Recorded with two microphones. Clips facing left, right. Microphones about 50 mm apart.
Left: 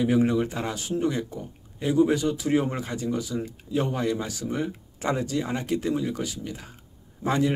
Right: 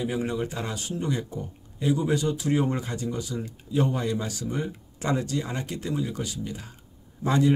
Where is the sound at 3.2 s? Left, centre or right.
Centre.